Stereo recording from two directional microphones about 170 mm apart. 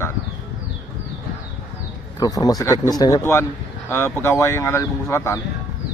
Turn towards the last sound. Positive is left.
turn(degrees=15)  # may be behind; listen again after turning